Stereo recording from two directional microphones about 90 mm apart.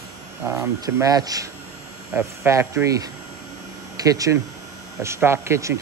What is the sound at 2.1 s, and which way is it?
Speech, 25° right (ahead or behind).